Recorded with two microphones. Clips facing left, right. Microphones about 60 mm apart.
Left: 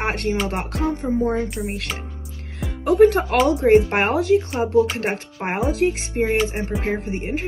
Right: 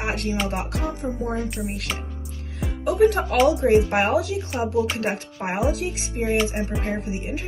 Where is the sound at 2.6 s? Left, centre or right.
Left.